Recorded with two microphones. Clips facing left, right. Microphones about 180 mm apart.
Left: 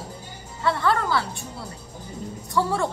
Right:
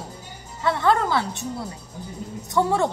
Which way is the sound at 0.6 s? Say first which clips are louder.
Right 2 dB; 20° right (ahead or behind).